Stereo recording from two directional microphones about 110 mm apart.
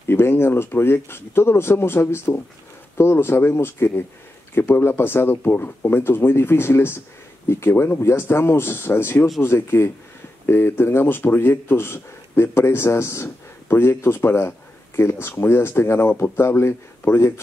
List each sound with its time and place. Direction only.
0.1 s speech: 20° left (ahead or behind)